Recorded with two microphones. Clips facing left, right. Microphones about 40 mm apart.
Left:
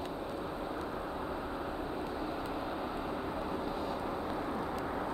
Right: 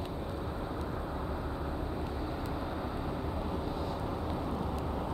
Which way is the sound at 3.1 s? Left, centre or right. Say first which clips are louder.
Even; centre.